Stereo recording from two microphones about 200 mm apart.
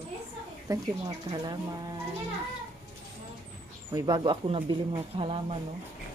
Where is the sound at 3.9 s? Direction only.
20° right (ahead or behind).